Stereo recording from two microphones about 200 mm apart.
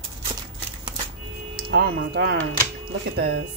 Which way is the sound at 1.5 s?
50° right (ahead or behind).